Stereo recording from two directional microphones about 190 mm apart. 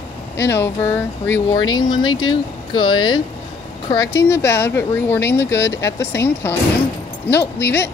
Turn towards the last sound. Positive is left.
turn(degrees=10)  # may be behind; listen again after turning